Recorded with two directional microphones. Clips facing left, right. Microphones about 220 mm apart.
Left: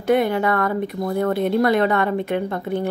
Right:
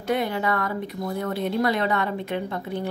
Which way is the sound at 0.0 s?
55° left (ahead or behind).